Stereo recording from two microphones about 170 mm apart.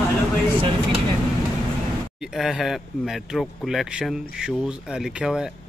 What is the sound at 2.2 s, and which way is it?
Speech, centre (ahead or behind).